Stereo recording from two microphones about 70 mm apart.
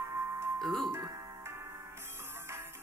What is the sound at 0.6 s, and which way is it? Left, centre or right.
Speech, centre.